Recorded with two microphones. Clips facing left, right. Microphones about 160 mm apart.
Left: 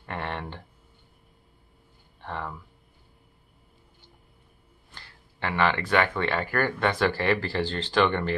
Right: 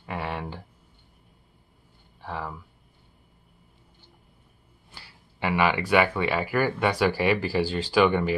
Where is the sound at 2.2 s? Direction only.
5° right (ahead or behind).